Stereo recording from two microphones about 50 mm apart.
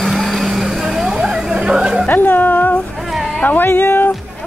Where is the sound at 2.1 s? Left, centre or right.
Left.